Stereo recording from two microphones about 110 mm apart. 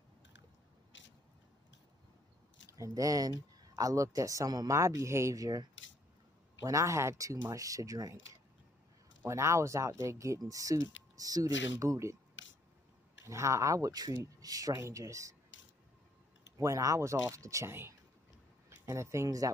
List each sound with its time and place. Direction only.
2.8 s speech: 30° right (ahead or behind)
13.2 s speech: 25° right (ahead or behind)
16.5 s speech: 25° right (ahead or behind)